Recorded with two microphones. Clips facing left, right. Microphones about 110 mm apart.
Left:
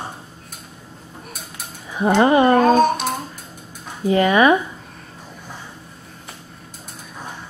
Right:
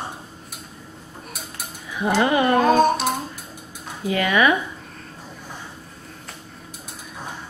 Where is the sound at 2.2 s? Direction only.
30° left (ahead or behind).